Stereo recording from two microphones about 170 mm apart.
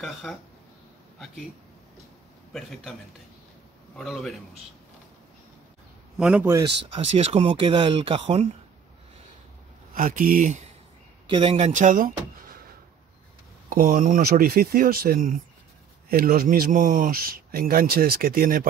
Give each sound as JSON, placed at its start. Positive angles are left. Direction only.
{"t": 0.0, "sound": "a man's voice", "side_deg": 0}
{"t": 2.5, "sound": "a man's voice", "side_deg": 0}
{"t": 6.1, "sound": "a man's voice", "side_deg": -5}
{"t": 7.1, "sound": "speech", "side_deg": -40}
{"t": 9.9, "sound": "speech", "side_deg": -55}
{"t": 11.2, "sound": "speech", "side_deg": -30}
{"t": 13.7, "sound": "speech", "side_deg": -55}